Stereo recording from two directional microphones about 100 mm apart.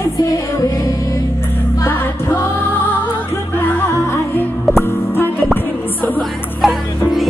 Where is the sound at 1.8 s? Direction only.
25° left (ahead or behind).